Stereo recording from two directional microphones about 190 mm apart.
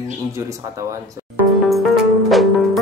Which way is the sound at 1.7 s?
Centre (ahead or behind).